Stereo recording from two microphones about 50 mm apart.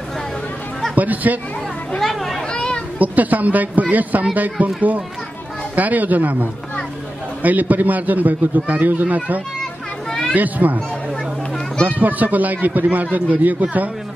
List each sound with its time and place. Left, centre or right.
0.9 s speech: right
2.0 s children playing: centre
2.5 s children playing: centre
3.0 s a man's voice: right
5.8 s a man's voice: right
10.3 s a man's voice: right
11.8 s a man's voice: right